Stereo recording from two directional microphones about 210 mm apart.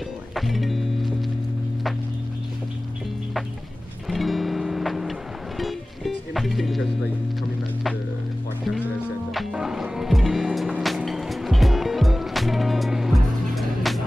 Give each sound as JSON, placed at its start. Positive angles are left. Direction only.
{"t": 0.3, "sound": "music", "side_deg": 0}
{"t": 4.1, "sound": "music", "side_deg": 0}
{"t": 9.3, "sound": "music", "side_deg": 0}